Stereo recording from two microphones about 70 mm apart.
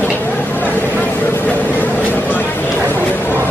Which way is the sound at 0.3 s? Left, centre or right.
Left.